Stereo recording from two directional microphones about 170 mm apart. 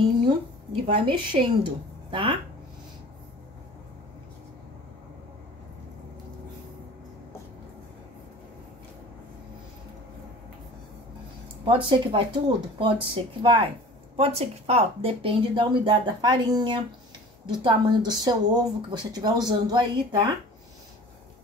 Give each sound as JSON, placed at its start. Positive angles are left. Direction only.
{"t": 1.0, "sound": "speech", "side_deg": -30}
{"t": 11.6, "sound": "speech", "side_deg": -30}